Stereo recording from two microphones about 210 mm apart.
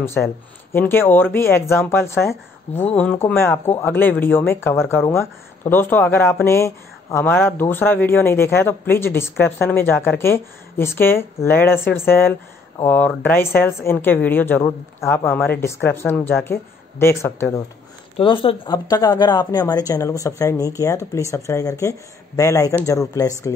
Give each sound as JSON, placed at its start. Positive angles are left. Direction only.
{"t": 0.7, "sound": "speech", "side_deg": 10}
{"t": 18.1, "sound": "speech", "side_deg": 25}